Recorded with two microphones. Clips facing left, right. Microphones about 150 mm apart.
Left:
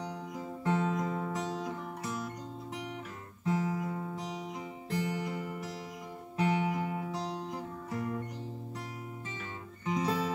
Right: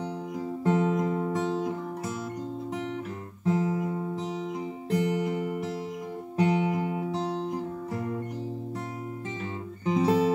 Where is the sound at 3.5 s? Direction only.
20° right (ahead or behind).